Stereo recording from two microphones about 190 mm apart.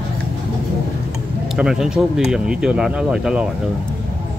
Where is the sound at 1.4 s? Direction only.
5° right (ahead or behind).